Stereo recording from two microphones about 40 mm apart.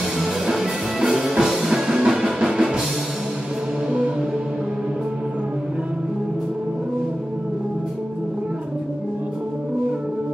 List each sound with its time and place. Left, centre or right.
0.2 s music: centre